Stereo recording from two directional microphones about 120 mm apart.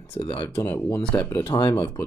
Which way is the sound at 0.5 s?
20° left (ahead or behind).